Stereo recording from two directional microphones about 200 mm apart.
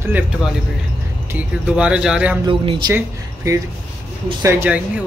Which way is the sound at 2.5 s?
25° right (ahead or behind).